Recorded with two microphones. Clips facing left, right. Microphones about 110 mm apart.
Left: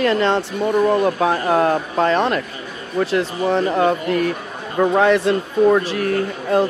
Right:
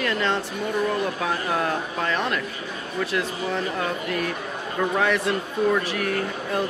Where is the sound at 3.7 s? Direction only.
35° left (ahead or behind).